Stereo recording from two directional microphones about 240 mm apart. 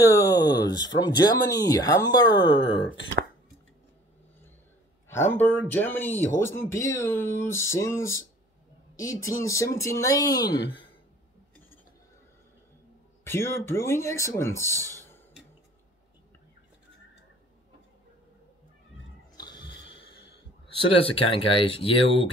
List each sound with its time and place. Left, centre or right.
0.0 s speech: centre
5.0 s speech: centre
13.2 s speech: centre
19.3 s a sound: centre
20.9 s speech: left